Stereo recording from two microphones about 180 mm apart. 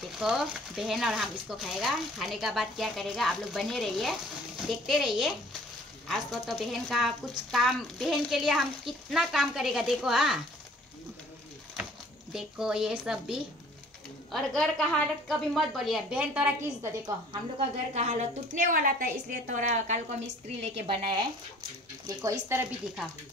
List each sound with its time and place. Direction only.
0.2 s speech: centre (ahead or behind)
12.3 s speech: 5° right (ahead or behind)
17.9 s a woman's voice: 45° right (ahead or behind)
22.0 s speech: 15° right (ahead or behind)